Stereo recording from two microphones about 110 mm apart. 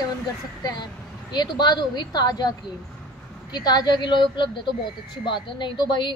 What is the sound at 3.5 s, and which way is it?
A woman's voice, 40° left (ahead or behind).